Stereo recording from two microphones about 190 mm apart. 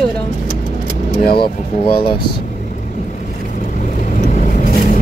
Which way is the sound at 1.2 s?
25° left (ahead or behind).